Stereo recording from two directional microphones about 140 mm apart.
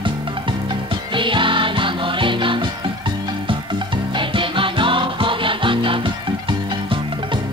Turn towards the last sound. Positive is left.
turn(degrees=-35)  # may be behind; listen again after turning